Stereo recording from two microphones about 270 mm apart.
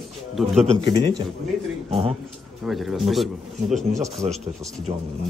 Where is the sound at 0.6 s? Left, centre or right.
Right.